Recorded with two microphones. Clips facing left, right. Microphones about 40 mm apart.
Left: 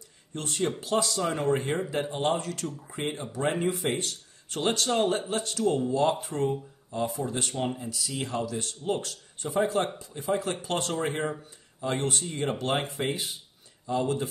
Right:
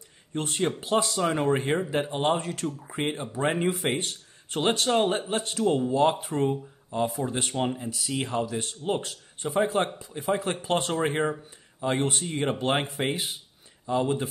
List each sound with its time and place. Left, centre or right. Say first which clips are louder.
0.3 s speech: right 2 dB; right